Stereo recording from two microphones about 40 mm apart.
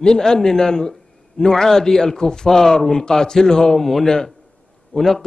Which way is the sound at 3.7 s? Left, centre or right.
Centre.